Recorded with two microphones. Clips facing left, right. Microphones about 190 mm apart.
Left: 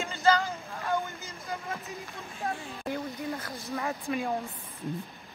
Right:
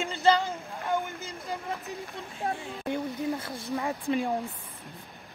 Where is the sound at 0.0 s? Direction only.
15° right (ahead or behind).